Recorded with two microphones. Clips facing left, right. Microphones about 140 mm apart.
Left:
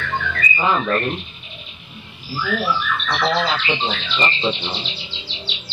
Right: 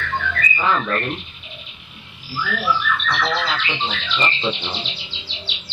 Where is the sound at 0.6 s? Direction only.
15° left (ahead or behind).